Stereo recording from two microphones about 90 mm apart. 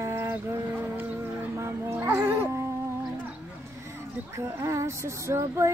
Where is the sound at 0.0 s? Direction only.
30° right (ahead or behind).